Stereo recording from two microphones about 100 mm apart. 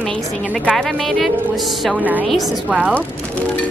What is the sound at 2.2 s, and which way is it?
Speech, centre (ahead or behind).